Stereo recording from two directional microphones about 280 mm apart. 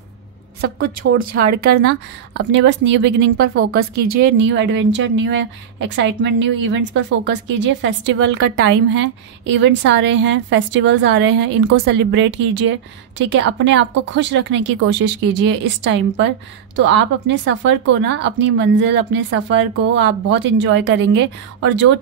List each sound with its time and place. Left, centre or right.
0.6 s a woman's voice: right